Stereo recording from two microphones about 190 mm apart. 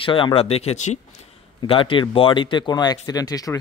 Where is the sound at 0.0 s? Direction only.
25° left (ahead or behind).